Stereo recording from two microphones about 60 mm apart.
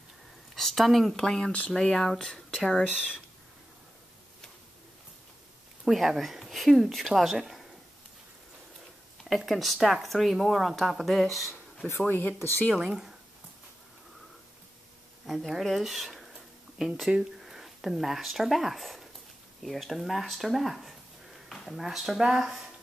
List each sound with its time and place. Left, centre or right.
0.6 s speech: centre
5.9 s speech: centre
9.2 s speech: centre
12.4 s speech: left
12.8 s speech: centre
15.2 s speech: centre